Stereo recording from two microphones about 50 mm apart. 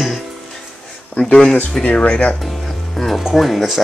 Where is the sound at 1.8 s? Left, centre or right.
Left.